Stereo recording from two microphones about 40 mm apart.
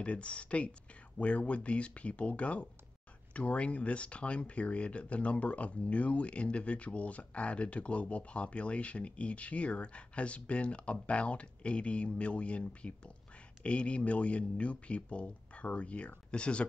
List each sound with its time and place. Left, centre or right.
0.0 s speech: left